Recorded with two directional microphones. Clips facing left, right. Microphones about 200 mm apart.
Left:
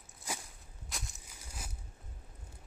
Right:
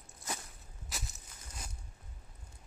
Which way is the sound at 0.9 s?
Centre (ahead or behind).